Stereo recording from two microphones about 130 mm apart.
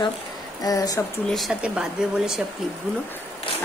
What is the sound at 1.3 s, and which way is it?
Speech, centre (ahead or behind).